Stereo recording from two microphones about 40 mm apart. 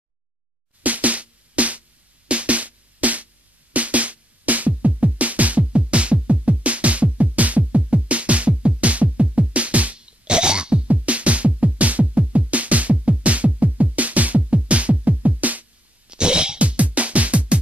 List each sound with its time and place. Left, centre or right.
0.8 s music: right
9.9 s music: right
10.9 s music: right
16.1 s cough: right
16.5 s music: right